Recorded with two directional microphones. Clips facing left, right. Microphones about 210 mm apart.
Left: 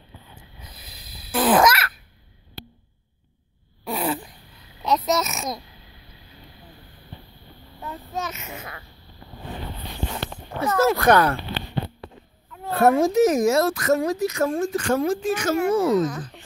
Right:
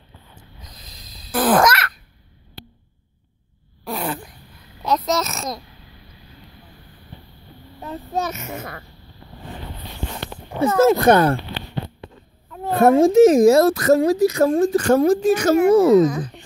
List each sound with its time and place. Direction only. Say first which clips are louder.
0.6 s a sound: right 1 dB; 10° left (ahead or behind)
3.8 s a sound: left 1 dB; 5° left (ahead or behind)
4.8 s a child's voice: right 1 dB; 5° left (ahead or behind)
7.8 s a child's voice: right 6 dB; 30° right (ahead or behind); by 8.8 s 45° right (ahead or behind)
10.6 s speech: right 5 dB; 25° right (ahead or behind)
12.6 s speech: right 4 dB; 25° right (ahead or behind)